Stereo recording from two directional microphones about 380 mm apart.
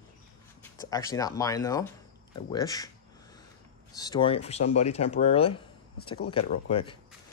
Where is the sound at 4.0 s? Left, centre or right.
Centre.